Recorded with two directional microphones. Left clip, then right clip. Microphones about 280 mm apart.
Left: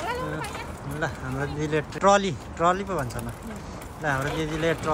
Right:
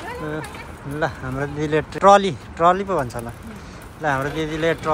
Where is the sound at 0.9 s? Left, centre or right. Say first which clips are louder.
Right 6 dB; centre.